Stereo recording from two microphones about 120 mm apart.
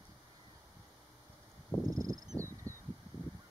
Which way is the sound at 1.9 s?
30° right (ahead or behind).